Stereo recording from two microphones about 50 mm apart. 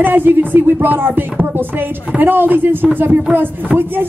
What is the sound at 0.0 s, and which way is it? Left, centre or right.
Speech, right.